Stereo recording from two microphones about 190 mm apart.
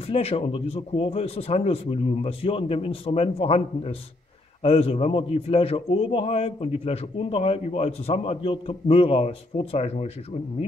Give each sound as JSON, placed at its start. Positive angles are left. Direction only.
{"t": 0.0, "sound": "a man's voice", "side_deg": 30}